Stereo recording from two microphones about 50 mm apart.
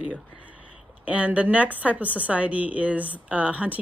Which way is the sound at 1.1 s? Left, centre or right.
Right.